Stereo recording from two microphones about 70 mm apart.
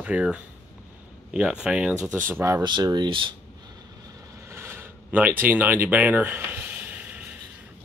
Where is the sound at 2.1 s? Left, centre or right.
Right.